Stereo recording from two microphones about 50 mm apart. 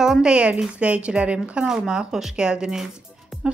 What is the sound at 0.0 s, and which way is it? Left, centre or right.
A woman's voice, centre.